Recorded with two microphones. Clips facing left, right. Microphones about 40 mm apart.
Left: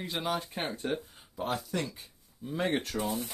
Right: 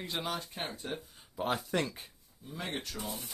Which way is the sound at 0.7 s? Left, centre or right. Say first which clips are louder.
Left 6 dB; centre.